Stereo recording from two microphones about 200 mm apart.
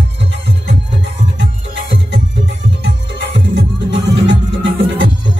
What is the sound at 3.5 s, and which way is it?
Music, 65° right (ahead or behind).